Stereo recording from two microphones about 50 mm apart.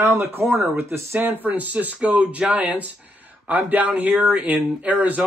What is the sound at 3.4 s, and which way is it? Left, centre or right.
Speech, right.